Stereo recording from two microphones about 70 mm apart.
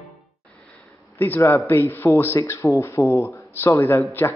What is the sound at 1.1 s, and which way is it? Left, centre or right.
A man's voice, left.